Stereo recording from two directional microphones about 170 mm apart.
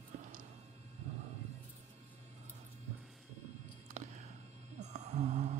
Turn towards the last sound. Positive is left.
turn(degrees=-40)  # may be behind; listen again after turning